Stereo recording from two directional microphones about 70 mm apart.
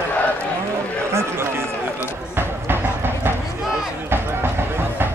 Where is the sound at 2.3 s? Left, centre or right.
Right.